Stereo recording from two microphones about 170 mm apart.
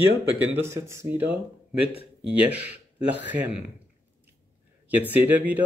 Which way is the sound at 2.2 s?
10° right (ahead or behind).